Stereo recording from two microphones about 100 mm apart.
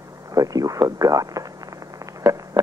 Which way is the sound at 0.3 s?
35° right (ahead or behind).